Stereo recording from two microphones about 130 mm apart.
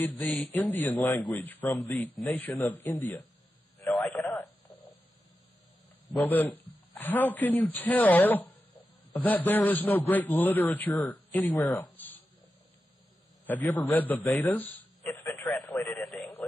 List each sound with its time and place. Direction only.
0.0 s a man's voice: 10° left (ahead or behind)
3.8 s radio: 20° left (ahead or behind)
6.1 s a man's voice: 15° left (ahead or behind)
13.5 s a man's voice: 15° left (ahead or behind)
15.0 s a sound: 30° left (ahead or behind)
15.5 s radio: 15° left (ahead or behind)